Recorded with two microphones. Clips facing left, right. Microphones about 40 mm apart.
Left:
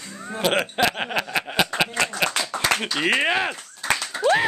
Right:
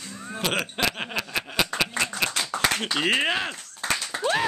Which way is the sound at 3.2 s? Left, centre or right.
Centre.